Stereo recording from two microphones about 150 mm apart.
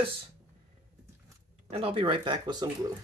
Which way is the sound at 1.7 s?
40° right (ahead or behind).